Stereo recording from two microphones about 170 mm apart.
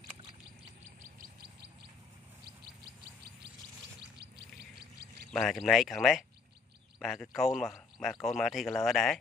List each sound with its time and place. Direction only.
1.1 s bird: 65° right (ahead or behind)
5.3 s speech: centre (ahead or behind)